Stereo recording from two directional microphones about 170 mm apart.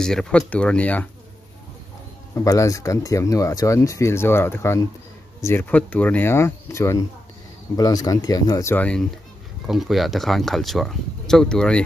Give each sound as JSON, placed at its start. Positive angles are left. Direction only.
{"t": 0.0, "sound": "speech", "side_deg": 5}
{"t": 2.3, "sound": "speech", "side_deg": 20}